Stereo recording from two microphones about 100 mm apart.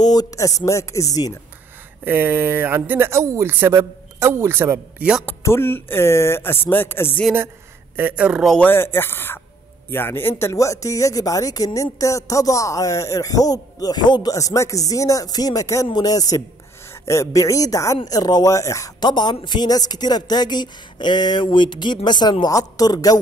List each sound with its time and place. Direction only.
0.0 s speech: 40° left (ahead or behind)
2.0 s speech: 20° right (ahead or behind)
5.4 s speech: 25° left (ahead or behind)
7.9 s speech: 15° right (ahead or behind)
8.5 s speech: 20° left (ahead or behind)
10.5 s speech: 35° left (ahead or behind)
14.3 s speech: 30° left (ahead or behind)
19.0 s speech: 45° left (ahead or behind)